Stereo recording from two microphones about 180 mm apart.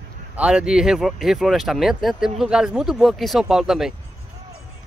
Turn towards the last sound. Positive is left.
turn(degrees=0)  # may be behind; listen again after turning